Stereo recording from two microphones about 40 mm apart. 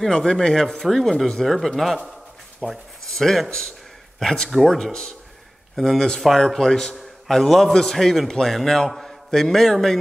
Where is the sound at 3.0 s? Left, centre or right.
Centre.